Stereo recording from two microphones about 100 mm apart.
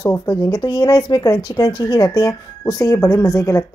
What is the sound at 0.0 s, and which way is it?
Speech, 35° left (ahead or behind).